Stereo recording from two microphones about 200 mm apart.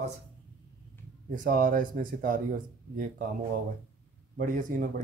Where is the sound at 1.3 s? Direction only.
40° right (ahead or behind).